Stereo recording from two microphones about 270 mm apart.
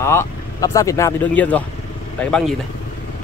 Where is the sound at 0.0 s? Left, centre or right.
Centre.